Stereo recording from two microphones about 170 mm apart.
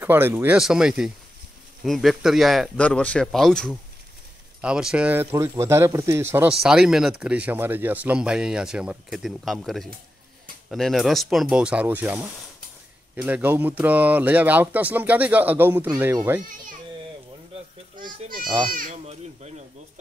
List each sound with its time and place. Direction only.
0.0 s speech: 10° right (ahead or behind)
6.6 s speech: 5° right (ahead or behind)
17.9 s a child's voice: 55° right (ahead or behind)